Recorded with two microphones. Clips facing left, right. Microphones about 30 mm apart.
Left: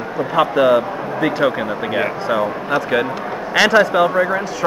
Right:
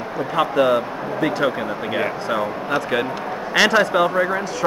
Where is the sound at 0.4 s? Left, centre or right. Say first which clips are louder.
Left 4 dB; centre.